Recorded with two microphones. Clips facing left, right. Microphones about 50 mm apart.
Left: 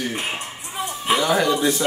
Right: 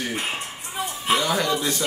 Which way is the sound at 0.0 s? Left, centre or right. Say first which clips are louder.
Left 1 dB; centre.